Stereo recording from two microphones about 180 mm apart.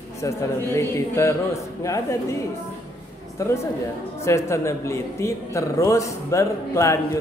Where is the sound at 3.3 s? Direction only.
15° left (ahead or behind).